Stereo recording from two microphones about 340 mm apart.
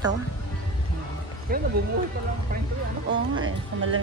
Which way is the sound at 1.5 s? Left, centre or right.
Right.